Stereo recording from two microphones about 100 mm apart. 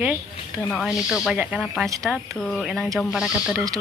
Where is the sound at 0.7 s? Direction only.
5° right (ahead or behind).